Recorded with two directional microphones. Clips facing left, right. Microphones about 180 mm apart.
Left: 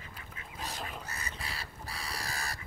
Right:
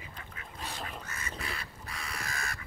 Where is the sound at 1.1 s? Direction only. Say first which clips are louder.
Right 2 dB; 35° left (ahead or behind).